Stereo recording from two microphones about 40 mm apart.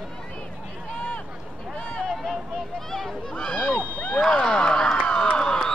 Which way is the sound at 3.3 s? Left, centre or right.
Left.